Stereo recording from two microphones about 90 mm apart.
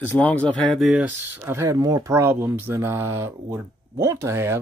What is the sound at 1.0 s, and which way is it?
Speech, 20° right (ahead or behind).